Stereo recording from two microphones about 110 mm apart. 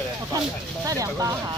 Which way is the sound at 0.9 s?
30° right (ahead or behind).